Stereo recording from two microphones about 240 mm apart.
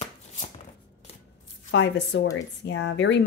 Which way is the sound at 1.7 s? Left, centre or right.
Left.